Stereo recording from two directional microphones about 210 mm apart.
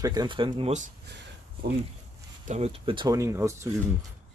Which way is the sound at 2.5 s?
30° right (ahead or behind).